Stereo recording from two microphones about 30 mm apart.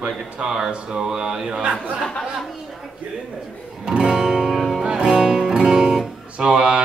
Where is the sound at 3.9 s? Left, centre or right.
Right.